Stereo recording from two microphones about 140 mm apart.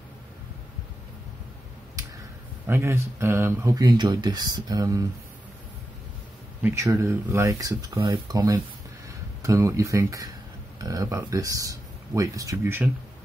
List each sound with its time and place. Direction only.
2.7 s speech: 15° right (ahead or behind)
3.7 s speech: 30° right (ahead or behind)
6.6 s speech: 20° right (ahead or behind)